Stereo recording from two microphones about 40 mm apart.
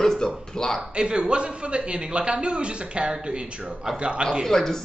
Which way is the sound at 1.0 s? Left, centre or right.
Right.